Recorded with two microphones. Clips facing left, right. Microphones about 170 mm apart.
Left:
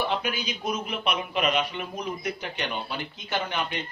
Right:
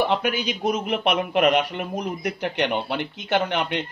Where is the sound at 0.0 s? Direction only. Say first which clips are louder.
Right 6 dB; 65° right (ahead or behind).